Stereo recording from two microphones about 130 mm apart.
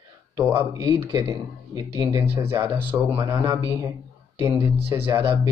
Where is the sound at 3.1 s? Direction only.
30° right (ahead or behind).